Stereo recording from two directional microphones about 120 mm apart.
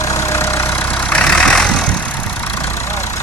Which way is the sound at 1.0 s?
10° left (ahead or behind).